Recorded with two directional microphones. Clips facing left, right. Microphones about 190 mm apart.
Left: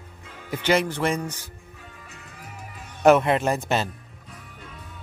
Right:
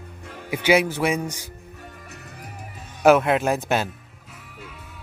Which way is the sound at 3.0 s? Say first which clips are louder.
Right 1 dB; centre (ahead or behind).